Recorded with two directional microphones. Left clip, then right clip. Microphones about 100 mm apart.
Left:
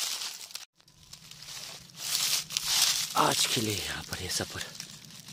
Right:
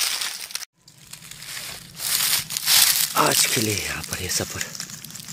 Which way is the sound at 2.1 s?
10° right (ahead or behind).